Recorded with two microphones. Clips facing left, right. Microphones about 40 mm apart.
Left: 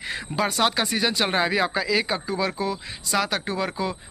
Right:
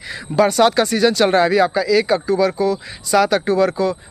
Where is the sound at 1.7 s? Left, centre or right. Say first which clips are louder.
Right 8 dB; left.